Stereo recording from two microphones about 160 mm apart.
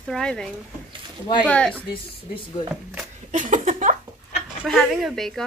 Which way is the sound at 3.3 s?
55° right (ahead or behind).